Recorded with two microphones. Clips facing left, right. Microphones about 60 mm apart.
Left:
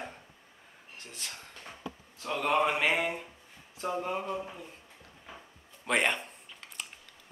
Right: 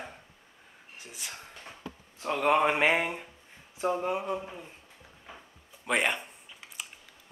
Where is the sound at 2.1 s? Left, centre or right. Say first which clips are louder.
Right 3 dB; right.